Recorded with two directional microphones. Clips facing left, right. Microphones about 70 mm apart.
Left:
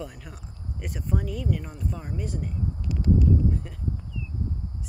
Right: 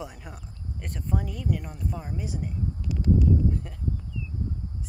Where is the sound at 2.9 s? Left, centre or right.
Left.